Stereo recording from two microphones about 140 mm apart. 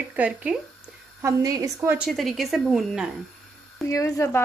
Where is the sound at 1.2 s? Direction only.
25° right (ahead or behind).